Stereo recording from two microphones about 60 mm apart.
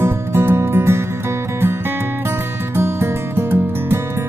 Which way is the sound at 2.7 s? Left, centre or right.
Right.